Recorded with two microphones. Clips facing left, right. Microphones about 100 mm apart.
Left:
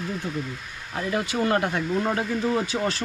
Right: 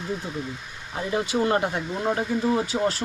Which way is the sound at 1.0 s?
15° right (ahead or behind).